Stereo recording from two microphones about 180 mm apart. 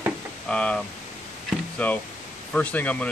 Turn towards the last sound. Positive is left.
turn(degrees=10)  # may be behind; listen again after turning